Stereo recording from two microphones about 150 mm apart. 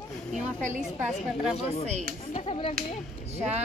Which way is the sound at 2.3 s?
40° left (ahead or behind).